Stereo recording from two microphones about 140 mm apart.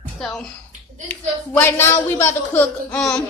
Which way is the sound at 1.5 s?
20° left (ahead or behind).